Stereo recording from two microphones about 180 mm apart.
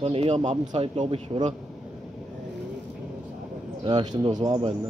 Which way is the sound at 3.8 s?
25° right (ahead or behind).